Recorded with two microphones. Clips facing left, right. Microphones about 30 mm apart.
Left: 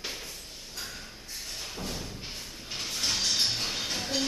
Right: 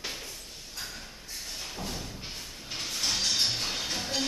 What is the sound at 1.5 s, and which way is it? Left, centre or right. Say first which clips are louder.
Thump: even; centre.